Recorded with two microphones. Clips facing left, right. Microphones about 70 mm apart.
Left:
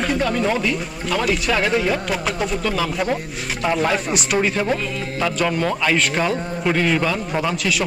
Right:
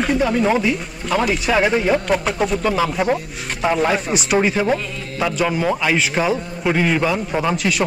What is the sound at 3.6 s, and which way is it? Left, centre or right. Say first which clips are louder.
Speech: right 2 dB; centre.